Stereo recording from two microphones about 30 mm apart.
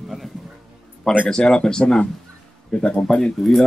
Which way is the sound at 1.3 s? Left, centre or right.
Left.